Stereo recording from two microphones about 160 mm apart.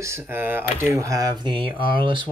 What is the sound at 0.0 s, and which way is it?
Speech, 15° right (ahead or behind).